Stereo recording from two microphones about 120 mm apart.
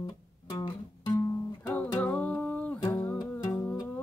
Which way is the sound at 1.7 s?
10° left (ahead or behind).